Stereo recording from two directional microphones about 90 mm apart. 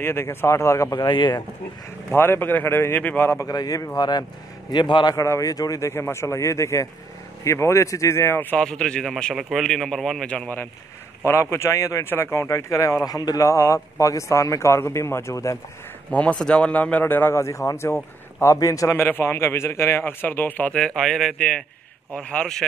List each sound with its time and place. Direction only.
0.0 s speech: 30° left (ahead or behind)
0.9 s speech: 60° left (ahead or behind)
2.0 s a man's voice: 25° left (ahead or behind)
3.3 s a man's voice: 35° left (ahead or behind); by 5.1 s 55° left (ahead or behind)
5.1 s speech: 35° left (ahead or behind)
8.5 s speech: 10° left (ahead or behind)
11.2 s speech: 30° left (ahead or behind)
16.1 s a man's voice: 15° left (ahead or behind)
20.7 s speech: 5° left (ahead or behind)